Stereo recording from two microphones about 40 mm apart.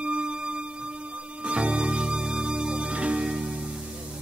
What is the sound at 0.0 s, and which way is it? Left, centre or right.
Music, right.